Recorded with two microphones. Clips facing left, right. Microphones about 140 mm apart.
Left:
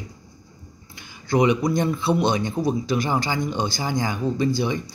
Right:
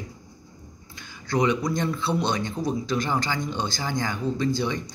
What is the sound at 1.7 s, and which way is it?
Speech, 15° left (ahead or behind).